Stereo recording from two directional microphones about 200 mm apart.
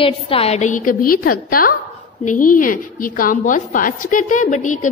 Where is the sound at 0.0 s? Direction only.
30° left (ahead or behind).